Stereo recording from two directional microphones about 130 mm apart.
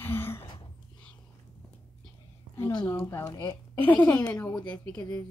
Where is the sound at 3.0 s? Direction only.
20° left (ahead or behind).